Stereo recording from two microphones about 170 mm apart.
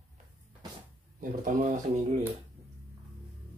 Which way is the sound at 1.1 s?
50° right (ahead or behind).